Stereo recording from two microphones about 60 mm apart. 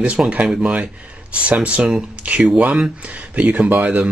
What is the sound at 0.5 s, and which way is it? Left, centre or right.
Speech, centre.